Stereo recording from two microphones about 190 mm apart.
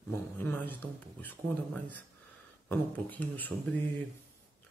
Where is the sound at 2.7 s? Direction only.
10° left (ahead or behind).